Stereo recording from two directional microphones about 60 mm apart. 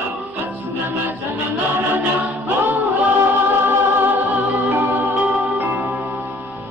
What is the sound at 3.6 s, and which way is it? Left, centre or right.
Music, right.